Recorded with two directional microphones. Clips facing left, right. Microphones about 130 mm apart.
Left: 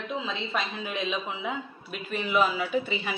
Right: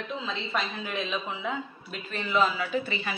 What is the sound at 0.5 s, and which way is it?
A man's voice, 15° left (ahead or behind).